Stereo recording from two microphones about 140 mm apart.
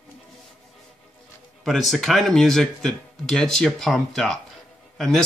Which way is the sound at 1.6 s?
Centre (ahead or behind).